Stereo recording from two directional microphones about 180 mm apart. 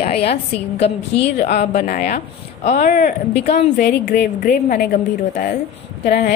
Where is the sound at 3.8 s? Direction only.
70° left (ahead or behind).